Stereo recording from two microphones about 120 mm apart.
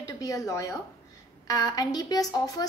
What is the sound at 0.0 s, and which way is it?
A woman's voice, 30° left (ahead or behind).